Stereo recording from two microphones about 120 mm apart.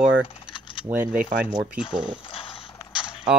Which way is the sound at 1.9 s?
35° right (ahead or behind).